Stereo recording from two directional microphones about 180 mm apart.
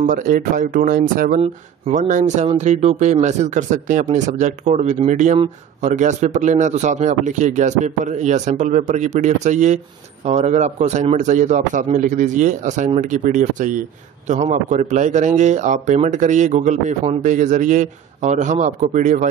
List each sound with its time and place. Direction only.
0.0 s a man's voice: 50° right (ahead or behind)
1.4 s a man's voice: 40° right (ahead or behind)